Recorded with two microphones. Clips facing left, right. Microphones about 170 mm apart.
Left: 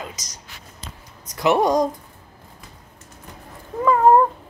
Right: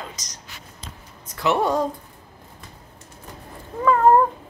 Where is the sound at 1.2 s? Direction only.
15° left (ahead or behind).